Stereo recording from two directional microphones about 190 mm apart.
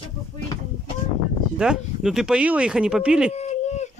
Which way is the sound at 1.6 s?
5° right (ahead or behind).